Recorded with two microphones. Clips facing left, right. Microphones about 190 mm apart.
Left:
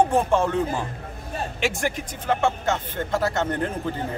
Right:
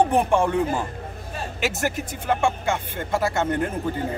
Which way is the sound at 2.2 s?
10° right (ahead or behind).